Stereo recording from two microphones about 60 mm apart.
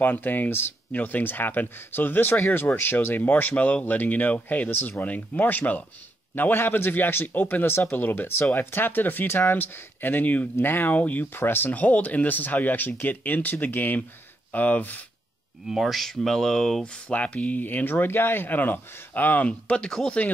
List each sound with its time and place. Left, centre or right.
0.0 s speech: left
3.3 s speech: left
15.6 s speech: centre; by 19.9 s left